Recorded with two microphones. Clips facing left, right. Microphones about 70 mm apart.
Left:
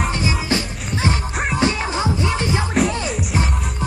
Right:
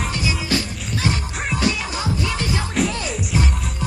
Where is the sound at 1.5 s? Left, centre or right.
Left.